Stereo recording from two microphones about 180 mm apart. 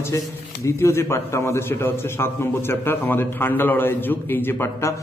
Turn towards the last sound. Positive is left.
turn(degrees=15)  # may be behind; listen again after turning